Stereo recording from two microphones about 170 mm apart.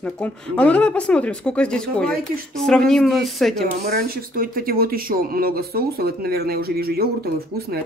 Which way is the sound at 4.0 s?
60° right (ahead or behind).